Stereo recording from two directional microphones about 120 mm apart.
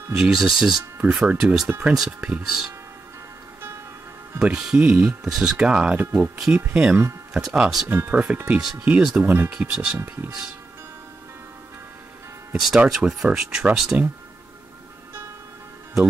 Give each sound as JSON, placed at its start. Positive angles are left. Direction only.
{"t": 0.2, "sound": "speech", "side_deg": -5}
{"t": 4.4, "sound": "speech", "side_deg": -5}
{"t": 7.9, "sound": "speech", "side_deg": -15}
{"t": 9.5, "sound": "speech", "side_deg": -10}
{"t": 12.5, "sound": "speech", "side_deg": 0}